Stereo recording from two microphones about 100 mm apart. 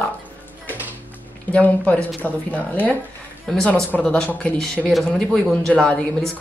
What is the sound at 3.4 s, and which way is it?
A woman's voice, 5° left (ahead or behind).